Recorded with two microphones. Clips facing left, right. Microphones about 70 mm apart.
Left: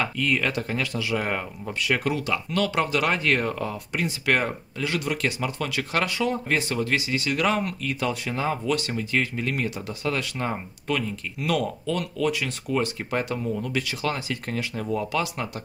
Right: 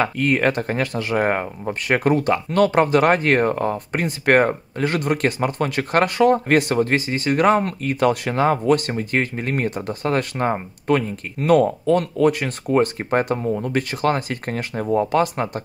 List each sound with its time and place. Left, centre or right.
0.0 s speech: right